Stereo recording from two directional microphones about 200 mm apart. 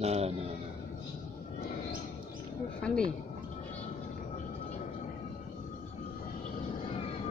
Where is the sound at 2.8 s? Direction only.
5° left (ahead or behind).